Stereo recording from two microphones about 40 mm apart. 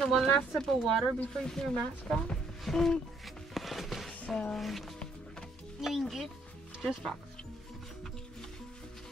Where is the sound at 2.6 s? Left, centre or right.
Centre.